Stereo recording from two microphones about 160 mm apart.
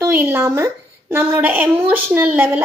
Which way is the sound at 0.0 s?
15° right (ahead or behind).